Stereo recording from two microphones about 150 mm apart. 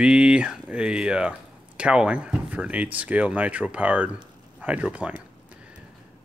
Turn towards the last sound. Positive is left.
turn(degrees=-10)  # may be behind; listen again after turning